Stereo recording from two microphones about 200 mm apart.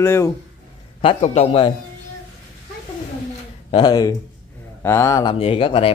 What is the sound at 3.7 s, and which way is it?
Speech, 20° left (ahead or behind).